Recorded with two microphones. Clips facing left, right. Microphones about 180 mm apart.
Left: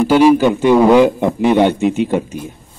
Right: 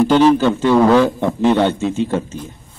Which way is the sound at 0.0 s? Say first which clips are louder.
Left 2 dB; 10° left (ahead or behind).